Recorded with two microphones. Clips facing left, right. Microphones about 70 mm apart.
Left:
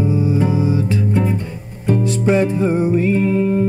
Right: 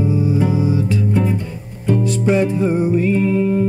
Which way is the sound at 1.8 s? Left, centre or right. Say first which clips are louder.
Even; left.